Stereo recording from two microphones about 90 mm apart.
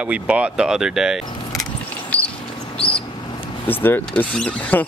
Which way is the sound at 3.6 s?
20° left (ahead or behind).